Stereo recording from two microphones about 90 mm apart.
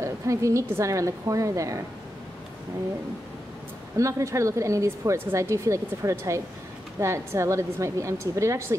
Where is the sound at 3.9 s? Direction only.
35° right (ahead or behind).